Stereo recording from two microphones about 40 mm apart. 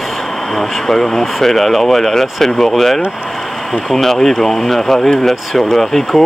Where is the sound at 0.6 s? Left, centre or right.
Centre.